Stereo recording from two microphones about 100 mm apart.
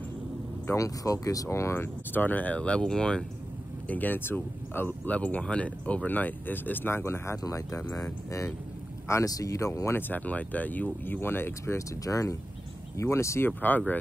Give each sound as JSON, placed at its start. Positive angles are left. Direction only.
{"t": 0.7, "sound": "speech", "side_deg": 35}
{"t": 3.9, "sound": "speech", "side_deg": 20}
{"t": 13.5, "sound": "speech", "side_deg": 15}